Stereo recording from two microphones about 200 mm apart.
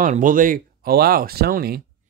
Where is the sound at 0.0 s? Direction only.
40° right (ahead or behind).